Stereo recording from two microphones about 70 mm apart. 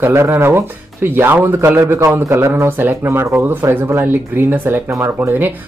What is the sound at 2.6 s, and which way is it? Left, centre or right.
Speech, right.